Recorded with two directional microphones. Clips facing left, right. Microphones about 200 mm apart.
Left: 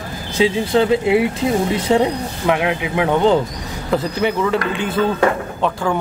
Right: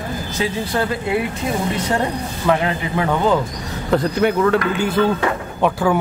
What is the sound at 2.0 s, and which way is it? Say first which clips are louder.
A man's voice: left 3 dB; 10° left (ahead or behind).